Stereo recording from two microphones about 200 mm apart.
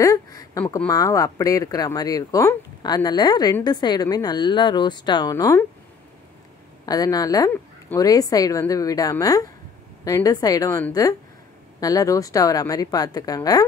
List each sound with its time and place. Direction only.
0.0 s speech: 15° left (ahead or behind)
6.9 s a woman's voice: 20° left (ahead or behind)